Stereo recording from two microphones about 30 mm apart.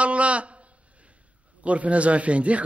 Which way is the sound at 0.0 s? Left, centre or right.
Right.